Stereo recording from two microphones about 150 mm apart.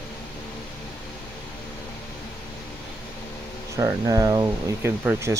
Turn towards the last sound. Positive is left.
turn(degrees=-15)  # may be behind; listen again after turning